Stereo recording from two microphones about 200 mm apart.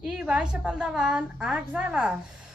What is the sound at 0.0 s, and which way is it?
A woman's voice, 5° right (ahead or behind).